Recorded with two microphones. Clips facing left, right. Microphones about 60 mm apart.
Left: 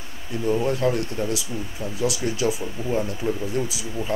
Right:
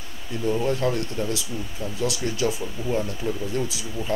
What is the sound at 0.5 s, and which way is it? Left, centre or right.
A man's voice, centre.